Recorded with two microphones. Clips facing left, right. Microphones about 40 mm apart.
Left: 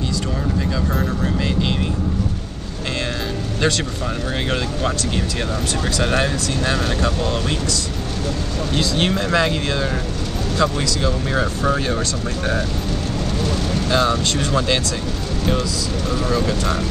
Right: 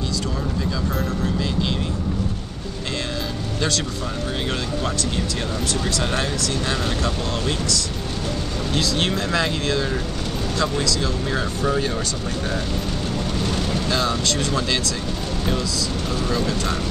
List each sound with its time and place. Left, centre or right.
0.7 s speech: centre
1.4 s vehicle: centre
5.9 s speech: left
8.7 s speech: centre
13.8 s speech: centre
16.3 s speech: centre